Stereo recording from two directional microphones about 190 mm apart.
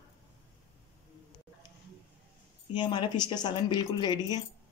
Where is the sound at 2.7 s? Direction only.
25° left (ahead or behind).